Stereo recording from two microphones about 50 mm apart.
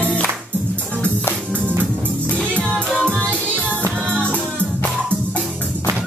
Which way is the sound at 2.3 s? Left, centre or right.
Left.